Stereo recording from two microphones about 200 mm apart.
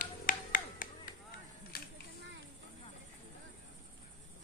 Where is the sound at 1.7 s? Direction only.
50° left (ahead or behind).